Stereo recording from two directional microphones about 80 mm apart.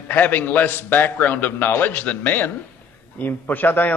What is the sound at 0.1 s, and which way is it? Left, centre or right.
A man's voice, left.